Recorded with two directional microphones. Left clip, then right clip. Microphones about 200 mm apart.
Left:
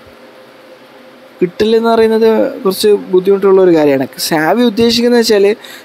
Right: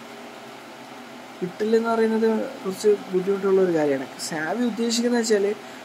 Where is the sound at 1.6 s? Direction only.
45° left (ahead or behind).